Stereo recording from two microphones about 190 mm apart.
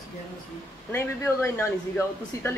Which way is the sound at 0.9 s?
10° left (ahead or behind).